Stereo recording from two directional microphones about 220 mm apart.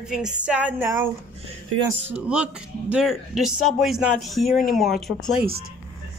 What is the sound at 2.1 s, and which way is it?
Speech, 5° right (ahead or behind).